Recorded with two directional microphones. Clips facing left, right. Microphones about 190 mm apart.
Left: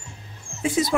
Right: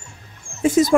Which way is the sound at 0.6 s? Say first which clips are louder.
Right 7 dB; 45° right (ahead or behind).